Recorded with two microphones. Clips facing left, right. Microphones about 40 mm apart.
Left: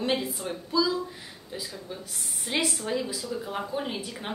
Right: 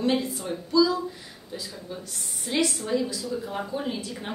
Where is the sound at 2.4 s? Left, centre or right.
Centre.